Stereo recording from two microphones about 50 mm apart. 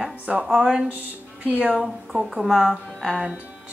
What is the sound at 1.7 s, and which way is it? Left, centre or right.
Speech, centre.